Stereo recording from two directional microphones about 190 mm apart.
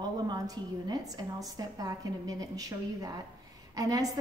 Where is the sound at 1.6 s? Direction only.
20° right (ahead or behind).